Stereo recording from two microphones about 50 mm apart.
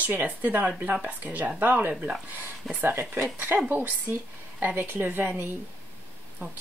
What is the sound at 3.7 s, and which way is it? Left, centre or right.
Speech, right.